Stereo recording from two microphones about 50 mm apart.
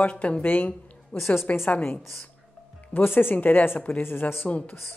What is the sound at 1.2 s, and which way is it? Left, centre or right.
Speech, left.